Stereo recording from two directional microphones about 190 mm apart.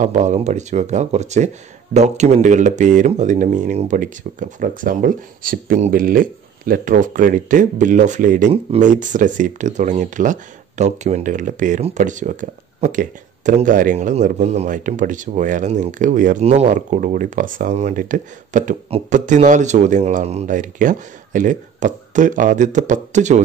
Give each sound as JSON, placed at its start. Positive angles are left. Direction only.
{"t": 0.0, "sound": "speech", "side_deg": -40}